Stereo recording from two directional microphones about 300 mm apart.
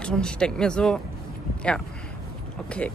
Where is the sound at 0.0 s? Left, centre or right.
Centre.